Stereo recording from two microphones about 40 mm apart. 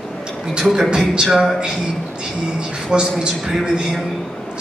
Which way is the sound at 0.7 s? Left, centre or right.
Centre.